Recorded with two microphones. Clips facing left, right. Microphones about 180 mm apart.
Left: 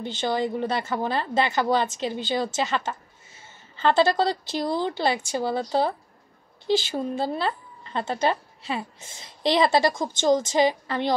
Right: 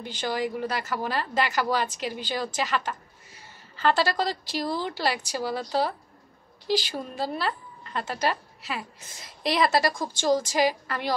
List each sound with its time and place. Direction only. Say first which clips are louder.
0.0 s a woman's voice: left 3 dB; 25° left (ahead or behind)